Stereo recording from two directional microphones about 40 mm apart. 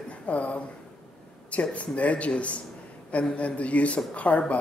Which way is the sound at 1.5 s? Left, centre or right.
Left.